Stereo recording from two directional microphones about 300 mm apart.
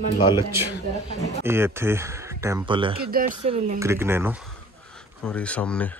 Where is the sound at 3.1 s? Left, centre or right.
Right.